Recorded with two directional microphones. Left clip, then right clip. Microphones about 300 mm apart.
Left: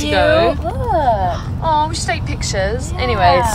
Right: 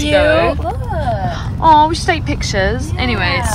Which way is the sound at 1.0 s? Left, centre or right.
Left.